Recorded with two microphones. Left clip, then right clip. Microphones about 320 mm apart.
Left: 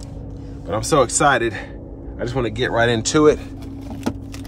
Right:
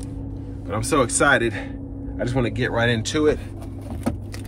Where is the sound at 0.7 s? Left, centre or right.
Centre.